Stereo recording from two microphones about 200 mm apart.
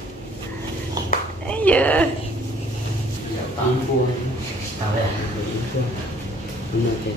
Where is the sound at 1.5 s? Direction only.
5° left (ahead or behind).